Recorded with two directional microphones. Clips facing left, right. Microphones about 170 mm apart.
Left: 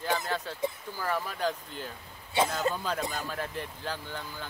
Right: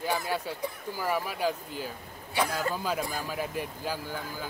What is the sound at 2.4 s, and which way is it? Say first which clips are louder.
Speech: left 2 dB; 25° left (ahead or behind).